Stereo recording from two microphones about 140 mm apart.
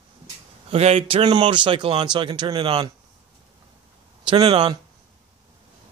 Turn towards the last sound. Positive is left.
turn(degrees=-40)  # may be behind; listen again after turning